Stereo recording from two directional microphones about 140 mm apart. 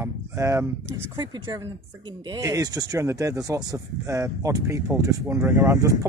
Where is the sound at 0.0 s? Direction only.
20° right (ahead or behind).